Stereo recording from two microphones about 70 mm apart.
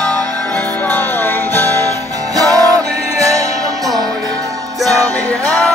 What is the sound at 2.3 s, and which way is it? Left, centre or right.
Music, right.